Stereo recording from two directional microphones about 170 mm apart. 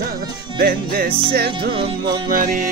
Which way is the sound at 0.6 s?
65° right (ahead or behind).